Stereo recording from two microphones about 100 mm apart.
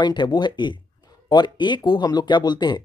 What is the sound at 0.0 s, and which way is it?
Speech, 50° left (ahead or behind).